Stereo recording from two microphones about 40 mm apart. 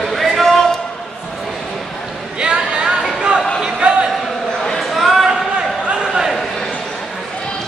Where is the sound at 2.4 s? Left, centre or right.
Right.